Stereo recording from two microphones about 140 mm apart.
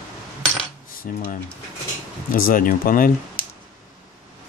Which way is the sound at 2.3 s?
85° left.